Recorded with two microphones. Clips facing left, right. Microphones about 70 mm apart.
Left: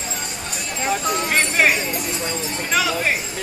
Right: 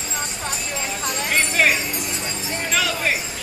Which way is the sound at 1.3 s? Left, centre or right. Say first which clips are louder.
Even; centre.